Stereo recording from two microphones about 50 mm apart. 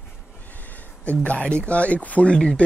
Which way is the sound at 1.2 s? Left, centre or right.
Left.